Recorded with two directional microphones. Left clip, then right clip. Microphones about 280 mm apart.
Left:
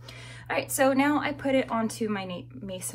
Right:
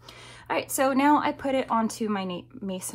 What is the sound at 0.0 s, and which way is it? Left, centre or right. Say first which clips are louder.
A woman's voice: even; centre.